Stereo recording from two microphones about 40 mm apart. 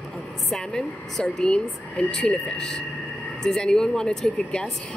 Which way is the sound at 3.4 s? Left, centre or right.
Centre.